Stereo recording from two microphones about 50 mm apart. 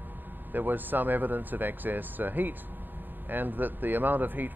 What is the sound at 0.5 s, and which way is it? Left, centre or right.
Speech, right.